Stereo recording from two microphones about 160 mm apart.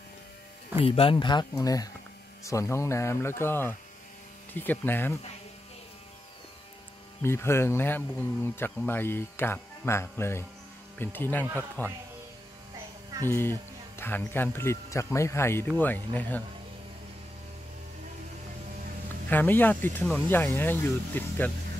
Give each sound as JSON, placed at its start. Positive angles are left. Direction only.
{"t": 0.8, "sound": "speech", "side_deg": 35}
{"t": 7.2, "sound": "speech", "side_deg": 15}
{"t": 13.2, "sound": "speech", "side_deg": 15}
{"t": 19.2, "sound": "speech", "side_deg": 10}